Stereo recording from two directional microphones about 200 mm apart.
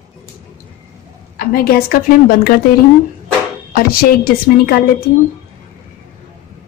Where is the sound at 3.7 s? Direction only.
50° left (ahead or behind).